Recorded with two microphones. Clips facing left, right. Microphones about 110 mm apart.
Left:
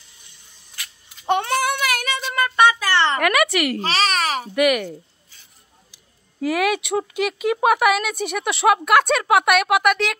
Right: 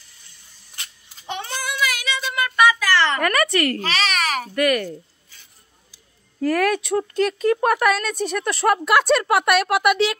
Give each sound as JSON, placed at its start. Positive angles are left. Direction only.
{"t": 0.8, "sound": "babbling", "side_deg": -25}
{"t": 1.2, "sound": "child singing", "side_deg": 60}
{"t": 2.4, "sound": "a sound", "side_deg": 30}
{"t": 3.2, "sound": "speech", "side_deg": 5}
{"t": 3.8, "sound": "babbling", "side_deg": 35}
{"t": 4.6, "sound": "speech", "side_deg": 15}
{"t": 6.4, "sound": "speech", "side_deg": 10}